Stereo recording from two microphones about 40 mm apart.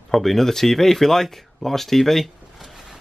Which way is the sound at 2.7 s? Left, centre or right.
Centre.